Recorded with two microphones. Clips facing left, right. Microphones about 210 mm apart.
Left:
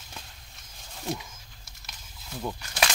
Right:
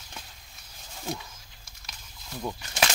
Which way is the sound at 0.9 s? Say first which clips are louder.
Left 2 dB; centre (ahead or behind).